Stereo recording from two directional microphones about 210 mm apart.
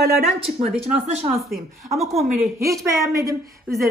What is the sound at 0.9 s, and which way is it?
Speech, 30° right (ahead or behind).